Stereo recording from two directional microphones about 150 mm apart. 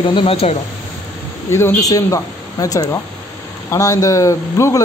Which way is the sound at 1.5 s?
20° left (ahead or behind).